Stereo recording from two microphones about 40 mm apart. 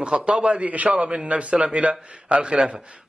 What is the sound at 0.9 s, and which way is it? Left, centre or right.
A man's voice, right.